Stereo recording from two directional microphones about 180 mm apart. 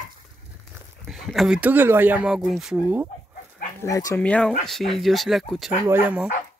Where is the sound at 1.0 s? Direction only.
Centre (ahead or behind).